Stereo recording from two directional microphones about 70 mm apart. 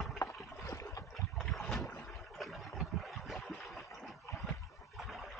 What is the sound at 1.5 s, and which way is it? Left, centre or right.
Boat, centre.